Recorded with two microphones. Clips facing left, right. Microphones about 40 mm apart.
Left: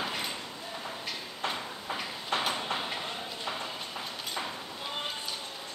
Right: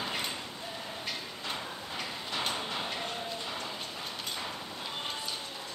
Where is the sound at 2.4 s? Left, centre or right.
Centre.